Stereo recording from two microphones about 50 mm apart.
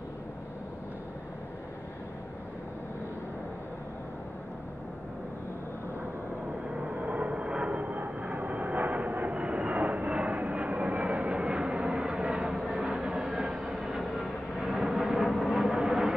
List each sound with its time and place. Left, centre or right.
6.7 s vehicle: right
13.6 s vehicle: centre
13.8 s vehicle: centre
14.7 s a sound: centre